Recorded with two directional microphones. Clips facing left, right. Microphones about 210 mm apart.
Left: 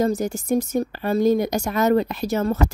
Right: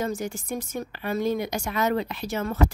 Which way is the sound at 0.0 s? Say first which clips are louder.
Left 7 dB; 40° left (ahead or behind).